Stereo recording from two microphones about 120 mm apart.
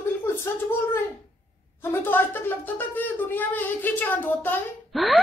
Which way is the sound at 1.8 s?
20° left (ahead or behind).